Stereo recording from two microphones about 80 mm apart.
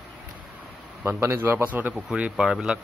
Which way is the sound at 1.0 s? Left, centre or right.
Right.